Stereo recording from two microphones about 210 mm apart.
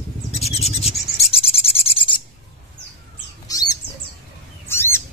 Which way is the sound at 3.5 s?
15° left (ahead or behind).